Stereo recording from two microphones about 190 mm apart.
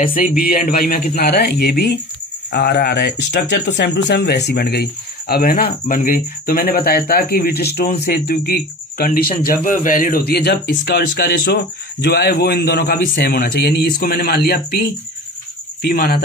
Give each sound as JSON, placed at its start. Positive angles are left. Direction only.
{"t": 0.0, "sound": "speech", "side_deg": 45}
{"t": 15.8, "sound": "speech", "side_deg": 55}